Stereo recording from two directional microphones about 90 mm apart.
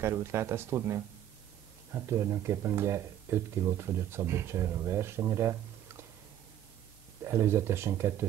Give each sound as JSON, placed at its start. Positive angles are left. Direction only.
{"t": 0.0, "sound": "speech", "side_deg": -30}
{"t": 7.2, "sound": "speech", "side_deg": -30}